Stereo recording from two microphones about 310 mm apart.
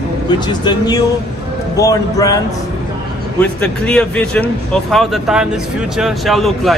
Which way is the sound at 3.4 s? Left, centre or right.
Centre.